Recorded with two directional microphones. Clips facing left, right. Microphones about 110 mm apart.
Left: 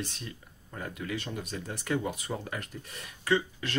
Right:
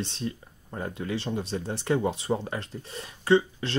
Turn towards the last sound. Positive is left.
turn(degrees=-30)  # may be behind; listen again after turning